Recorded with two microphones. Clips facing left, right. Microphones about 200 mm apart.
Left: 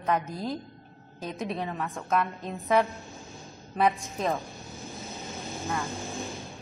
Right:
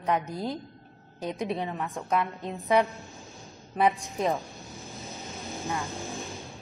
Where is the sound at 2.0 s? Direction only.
15° right (ahead or behind).